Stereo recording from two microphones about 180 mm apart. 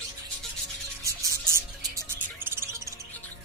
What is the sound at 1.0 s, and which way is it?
Music, 15° right (ahead or behind).